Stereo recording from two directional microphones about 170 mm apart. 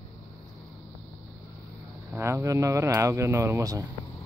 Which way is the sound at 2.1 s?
15° right (ahead or behind).